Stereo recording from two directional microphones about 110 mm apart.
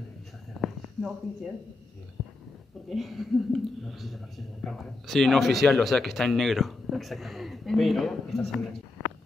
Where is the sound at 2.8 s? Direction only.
Centre (ahead or behind).